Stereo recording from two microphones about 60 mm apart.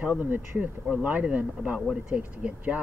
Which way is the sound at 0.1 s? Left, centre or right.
Right.